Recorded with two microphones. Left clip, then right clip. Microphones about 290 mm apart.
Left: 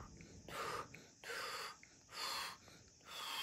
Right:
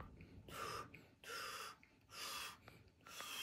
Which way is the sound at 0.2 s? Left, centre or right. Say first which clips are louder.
Left 4 dB; left.